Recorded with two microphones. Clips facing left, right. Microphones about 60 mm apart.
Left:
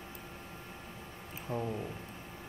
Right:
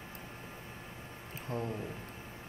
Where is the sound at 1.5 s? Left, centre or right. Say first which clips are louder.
Left 1 dB; centre.